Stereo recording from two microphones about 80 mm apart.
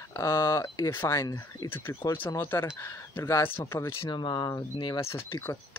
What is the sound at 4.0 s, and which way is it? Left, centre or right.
Speech, left.